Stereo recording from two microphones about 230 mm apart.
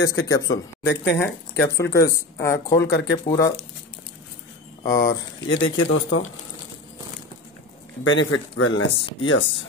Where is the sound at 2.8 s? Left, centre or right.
Left.